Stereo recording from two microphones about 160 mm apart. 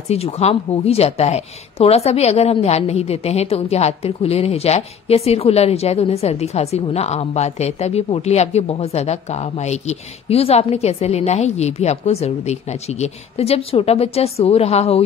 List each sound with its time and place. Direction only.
0.1 s a woman's voice: 40° left (ahead or behind)